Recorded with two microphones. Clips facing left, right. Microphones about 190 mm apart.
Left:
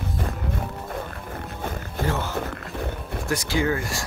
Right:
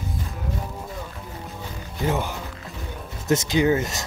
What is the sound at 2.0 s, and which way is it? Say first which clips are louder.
Speech: right 1 dB; 15° right (ahead or behind).